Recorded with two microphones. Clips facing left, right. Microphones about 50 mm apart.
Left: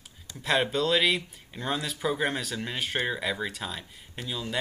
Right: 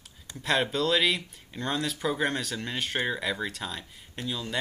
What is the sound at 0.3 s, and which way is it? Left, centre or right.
Speech, centre.